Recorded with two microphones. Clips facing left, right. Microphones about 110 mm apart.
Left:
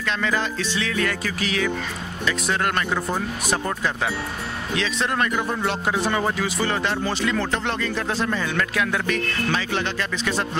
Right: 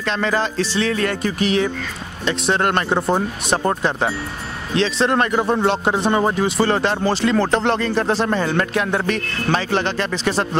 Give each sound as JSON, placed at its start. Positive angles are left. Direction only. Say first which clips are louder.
{"t": 0.0, "sound": "speech", "louder": "right 4 dB", "side_deg": -35}